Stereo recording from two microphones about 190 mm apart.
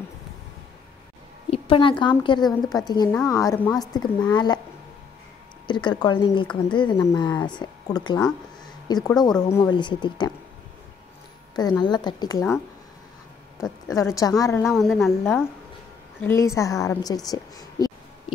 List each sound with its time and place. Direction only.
1.5 s speech: 25° left (ahead or behind)
5.7 s speech: 25° left (ahead or behind)
11.5 s speech: 20° left (ahead or behind)
13.6 s a woman's voice: 15° left (ahead or behind)
14.7 s a woman's voice: centre (ahead or behind)
16.2 s a woman's voice: 15° left (ahead or behind)